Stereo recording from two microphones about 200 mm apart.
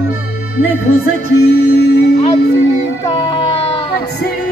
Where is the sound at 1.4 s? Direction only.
55° left (ahead or behind).